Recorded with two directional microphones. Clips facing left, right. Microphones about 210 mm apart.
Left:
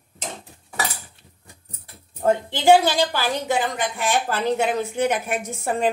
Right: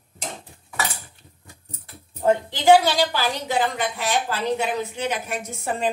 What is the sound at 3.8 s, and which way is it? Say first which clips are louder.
A woman's voice: left 1 dB; 50° left (ahead or behind).